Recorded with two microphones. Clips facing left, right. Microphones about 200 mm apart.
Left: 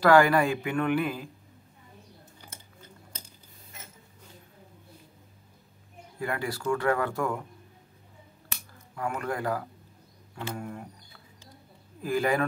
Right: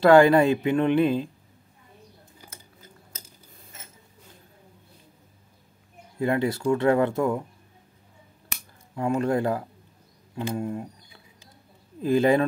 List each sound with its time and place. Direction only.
0.0 s speech: 25° right (ahead or behind)
6.1 s speech: 25° right (ahead or behind)
8.9 s speech: 25° right (ahead or behind)